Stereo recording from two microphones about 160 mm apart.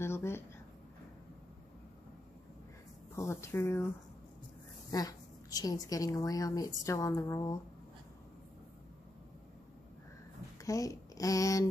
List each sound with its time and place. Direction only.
0.0 s a sound: 15° left (ahead or behind)
3.2 s speech: 15° left (ahead or behind)
4.9 s a woman's voice: 20° left (ahead or behind)
10.6 s speech: 20° left (ahead or behind)